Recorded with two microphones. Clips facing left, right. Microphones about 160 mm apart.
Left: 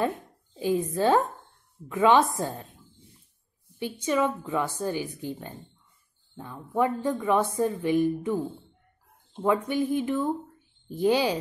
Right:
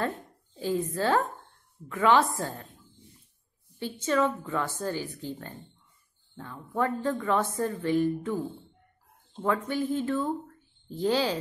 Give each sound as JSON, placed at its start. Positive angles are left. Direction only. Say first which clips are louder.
{"t": 0.0, "sound": "a woman's voice", "louder": "left 3 dB", "side_deg": 15}
{"t": 4.0, "sound": "a woman's voice", "louder": "even", "side_deg": 15}